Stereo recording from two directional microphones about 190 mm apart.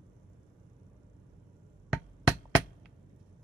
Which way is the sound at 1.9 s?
Centre (ahead or behind).